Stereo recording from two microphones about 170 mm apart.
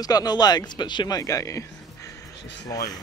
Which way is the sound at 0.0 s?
20° left (ahead or behind).